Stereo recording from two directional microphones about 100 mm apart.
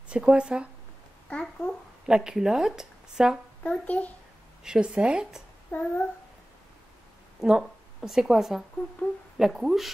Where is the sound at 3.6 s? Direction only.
15° left (ahead or behind).